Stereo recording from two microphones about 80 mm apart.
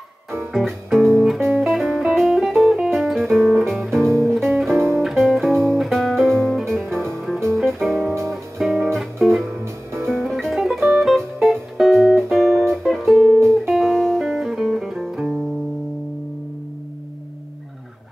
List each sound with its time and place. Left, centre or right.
0.3 s music: centre
4.7 s music: right
5.0 s music: centre